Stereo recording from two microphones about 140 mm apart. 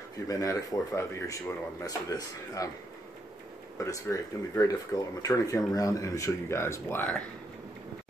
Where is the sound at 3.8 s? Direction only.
20° left (ahead or behind).